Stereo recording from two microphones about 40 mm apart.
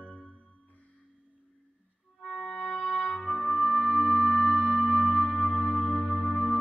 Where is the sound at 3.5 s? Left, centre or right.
Right.